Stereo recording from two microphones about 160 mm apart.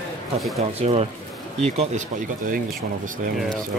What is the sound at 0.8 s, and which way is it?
Speech, 40° right (ahead or behind).